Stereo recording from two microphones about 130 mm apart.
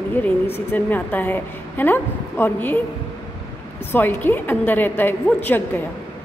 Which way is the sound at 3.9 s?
15° left (ahead or behind).